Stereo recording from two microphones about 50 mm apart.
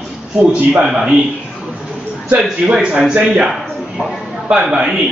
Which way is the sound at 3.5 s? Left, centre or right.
Centre.